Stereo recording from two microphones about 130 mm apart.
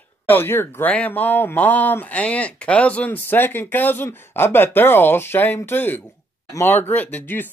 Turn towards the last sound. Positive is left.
turn(degrees=15)  # may be behind; listen again after turning